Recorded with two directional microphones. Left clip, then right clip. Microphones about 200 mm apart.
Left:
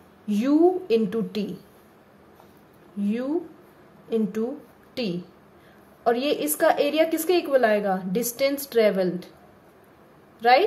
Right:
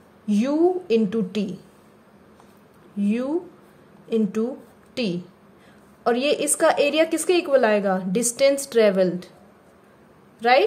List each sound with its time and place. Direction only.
0.3 s a woman's voice: 5° right (ahead or behind)
3.0 s a woman's voice: 15° right (ahead or behind)
10.4 s a woman's voice: 15° right (ahead or behind)